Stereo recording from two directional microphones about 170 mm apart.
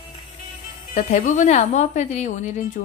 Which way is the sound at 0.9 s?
45° left (ahead or behind).